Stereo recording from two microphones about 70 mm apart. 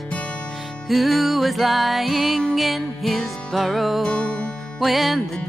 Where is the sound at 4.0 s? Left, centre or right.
Centre.